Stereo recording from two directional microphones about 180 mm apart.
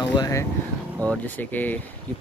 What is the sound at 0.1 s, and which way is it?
Speech, 20° left (ahead or behind).